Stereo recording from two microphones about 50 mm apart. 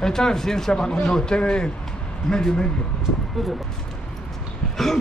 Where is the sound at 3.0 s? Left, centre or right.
Centre.